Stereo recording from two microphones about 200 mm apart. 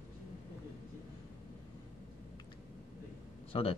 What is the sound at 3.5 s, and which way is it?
Speech, 30° left (ahead or behind).